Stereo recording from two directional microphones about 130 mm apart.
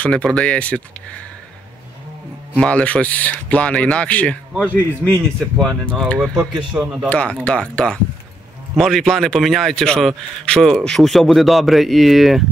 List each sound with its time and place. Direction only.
0.0 s speech: 10° left (ahead or behind)
2.5 s speech: 10° left (ahead or behind)
4.6 s speech: 15° right (ahead or behind)
5.2 s speech: 5° left (ahead or behind)
6.1 s speech: 5° right (ahead or behind)
7.1 s speech: 10° left (ahead or behind)